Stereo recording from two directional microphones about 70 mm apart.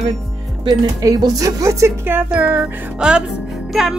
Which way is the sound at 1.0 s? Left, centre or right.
Right.